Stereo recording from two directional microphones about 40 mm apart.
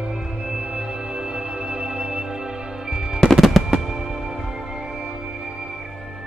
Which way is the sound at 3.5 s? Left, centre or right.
Centre.